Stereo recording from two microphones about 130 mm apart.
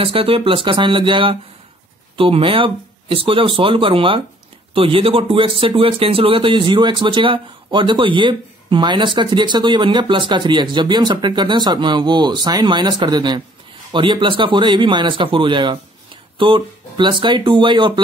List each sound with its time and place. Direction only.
0.0 s speech: 45° right (ahead or behind)